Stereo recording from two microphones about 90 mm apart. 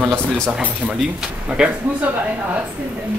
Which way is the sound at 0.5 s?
10° right (ahead or behind).